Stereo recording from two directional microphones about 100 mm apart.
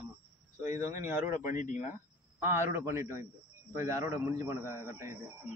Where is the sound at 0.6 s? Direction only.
30° right (ahead or behind).